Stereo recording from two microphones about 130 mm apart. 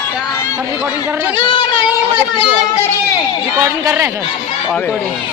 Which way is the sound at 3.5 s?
25° right (ahead or behind).